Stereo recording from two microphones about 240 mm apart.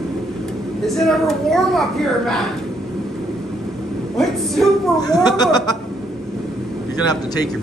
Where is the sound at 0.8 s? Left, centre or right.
Centre.